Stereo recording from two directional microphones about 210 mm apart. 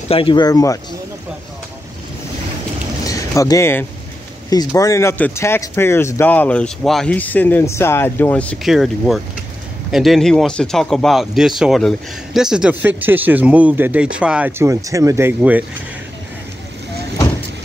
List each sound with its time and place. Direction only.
0.1 s speech: 25° left (ahead or behind)
3.0 s a sound: 15° left (ahead or behind)
4.5 s speech: 15° left (ahead or behind); by 15.6 s 10° right (ahead or behind)